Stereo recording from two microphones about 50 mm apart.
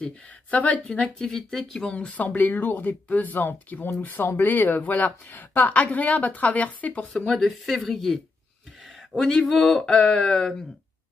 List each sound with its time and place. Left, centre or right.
0.5 s speech: left
0.8 s speech: centre
1.9 s speech: left
6.9 s speech: left
7.2 s speech: centre